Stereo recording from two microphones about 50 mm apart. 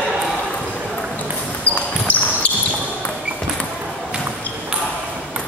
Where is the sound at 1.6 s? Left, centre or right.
Left.